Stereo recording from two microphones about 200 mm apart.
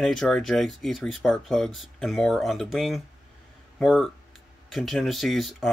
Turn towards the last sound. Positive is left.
turn(degrees=0)  # may be behind; listen again after turning